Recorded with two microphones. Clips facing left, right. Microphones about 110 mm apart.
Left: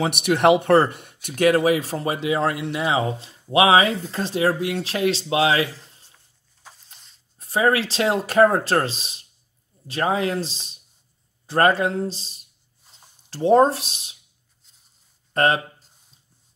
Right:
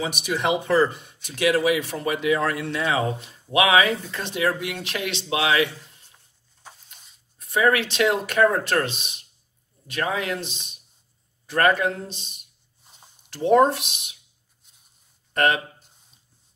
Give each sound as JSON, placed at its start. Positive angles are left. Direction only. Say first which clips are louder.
{"t": 0.0, "sound": "speech", "louder": "left 7 dB", "side_deg": 65}
{"t": 7.3, "sound": "speech", "louder": "left 1 dB", "side_deg": 35}
{"t": 15.3, "sound": "speech", "louder": "left 2 dB", "side_deg": 35}